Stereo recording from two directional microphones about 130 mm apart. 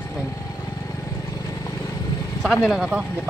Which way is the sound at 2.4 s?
Centre (ahead or behind).